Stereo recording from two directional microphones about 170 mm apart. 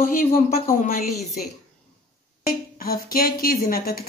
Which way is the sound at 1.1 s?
Centre (ahead or behind).